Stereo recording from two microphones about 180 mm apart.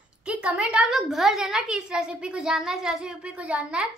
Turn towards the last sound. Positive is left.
turn(degrees=-5)  # may be behind; listen again after turning